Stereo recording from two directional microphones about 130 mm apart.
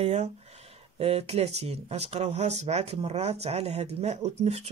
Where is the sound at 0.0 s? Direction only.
60° right (ahead or behind).